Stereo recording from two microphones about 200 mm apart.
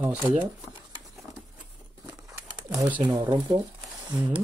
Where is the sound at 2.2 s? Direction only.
15° right (ahead or behind).